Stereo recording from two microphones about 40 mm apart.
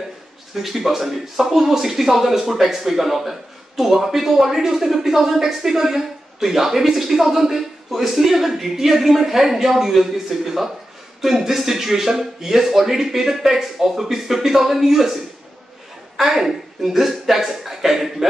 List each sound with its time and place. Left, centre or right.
0.6 s speech: centre
16.2 s speech: centre